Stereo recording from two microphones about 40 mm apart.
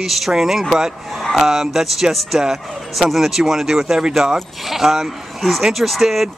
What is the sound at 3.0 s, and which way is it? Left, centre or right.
Speech, centre.